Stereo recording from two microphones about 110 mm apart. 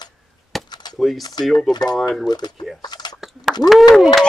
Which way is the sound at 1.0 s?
5° left (ahead or behind).